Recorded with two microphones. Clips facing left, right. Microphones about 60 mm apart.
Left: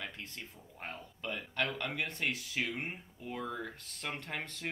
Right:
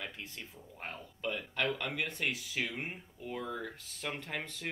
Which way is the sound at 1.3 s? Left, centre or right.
Centre.